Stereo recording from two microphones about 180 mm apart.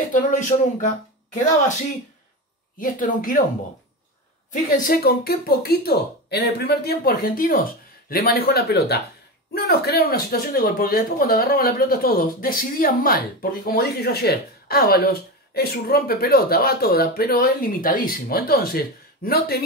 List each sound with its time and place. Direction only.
0.1 s speech: 45° left (ahead or behind)
2.8 s speech: 50° left (ahead or behind)
4.5 s speech: 50° left (ahead or behind)